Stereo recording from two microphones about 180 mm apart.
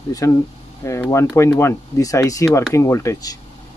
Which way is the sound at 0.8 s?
15° left (ahead or behind).